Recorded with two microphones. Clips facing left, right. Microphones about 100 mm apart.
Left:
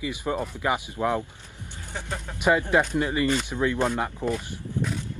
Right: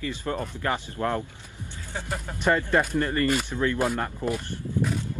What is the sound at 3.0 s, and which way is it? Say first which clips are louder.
Speech: even; 10° left (ahead or behind).